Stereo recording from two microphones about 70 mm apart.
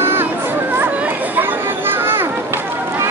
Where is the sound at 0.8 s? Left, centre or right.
Right.